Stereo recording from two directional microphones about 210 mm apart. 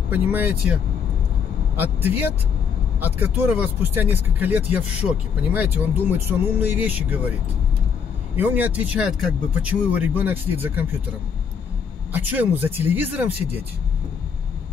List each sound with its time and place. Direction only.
0.1 s speech: 10° right (ahead or behind)
1.8 s speech: 10° right (ahead or behind)
8.4 s speech: 10° right (ahead or behind)
12.1 s speech: 10° right (ahead or behind)